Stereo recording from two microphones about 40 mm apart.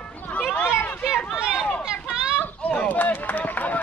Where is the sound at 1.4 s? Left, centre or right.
Centre.